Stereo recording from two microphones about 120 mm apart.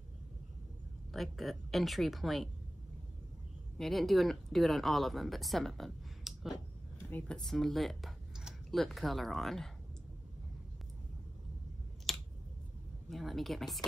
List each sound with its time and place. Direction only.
1.1 s speech: centre (ahead or behind)
3.7 s speech: centre (ahead or behind)
7.1 s speech: 15° left (ahead or behind)
7.3 s speech: 5° left (ahead or behind)
12.1 s a sound: centre (ahead or behind)
13.1 s speech: centre (ahead or behind)